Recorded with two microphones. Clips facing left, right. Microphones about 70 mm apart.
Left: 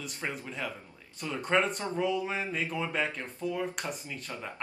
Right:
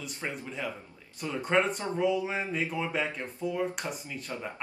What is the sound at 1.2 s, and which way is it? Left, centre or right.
Speech, centre.